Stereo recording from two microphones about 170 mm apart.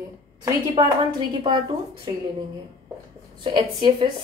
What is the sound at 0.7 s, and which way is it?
A woman's voice, 25° right (ahead or behind).